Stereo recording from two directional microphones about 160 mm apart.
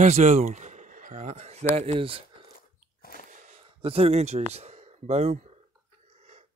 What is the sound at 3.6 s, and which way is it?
Speech, 35° right (ahead or behind).